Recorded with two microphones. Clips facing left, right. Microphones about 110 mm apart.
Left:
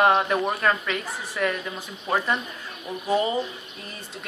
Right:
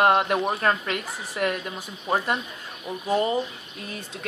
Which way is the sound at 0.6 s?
40° right (ahead or behind).